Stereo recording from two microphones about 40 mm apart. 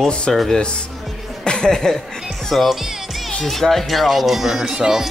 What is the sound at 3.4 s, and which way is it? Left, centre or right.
Speech, centre.